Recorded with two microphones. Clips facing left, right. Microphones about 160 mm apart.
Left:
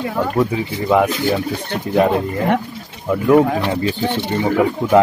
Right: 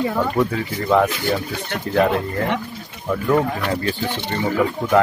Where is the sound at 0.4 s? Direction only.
15° left (ahead or behind).